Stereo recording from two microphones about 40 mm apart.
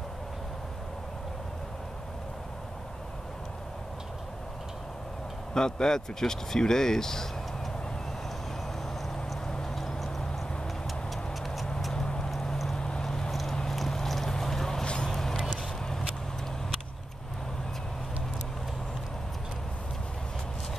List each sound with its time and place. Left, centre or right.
5.5 s speech: centre
9.5 s a sound: centre
10.9 s tick-tock: centre
11.9 s vehicle: centre
12.3 s clip-clop: centre
12.6 s vehicle: centre
13.3 s a sound: centre
15.0 s vehicle: centre